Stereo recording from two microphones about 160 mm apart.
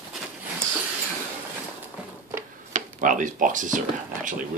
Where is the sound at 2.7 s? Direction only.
50° right (ahead or behind).